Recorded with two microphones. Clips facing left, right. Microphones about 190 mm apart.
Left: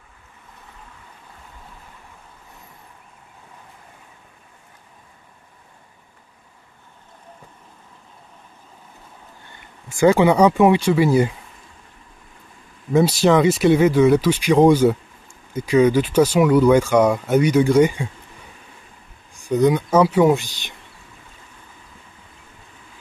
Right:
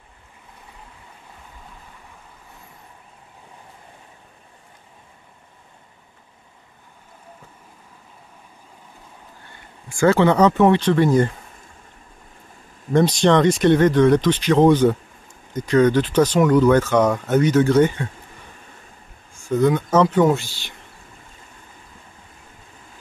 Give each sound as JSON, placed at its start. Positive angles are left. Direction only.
{"t": 9.8, "sound": "speech", "side_deg": 15}
{"t": 12.9, "sound": "speech", "side_deg": 5}
{"t": 19.3, "sound": "speech", "side_deg": 15}